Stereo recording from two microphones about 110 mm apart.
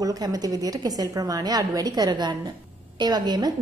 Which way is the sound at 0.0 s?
35° right (ahead or behind).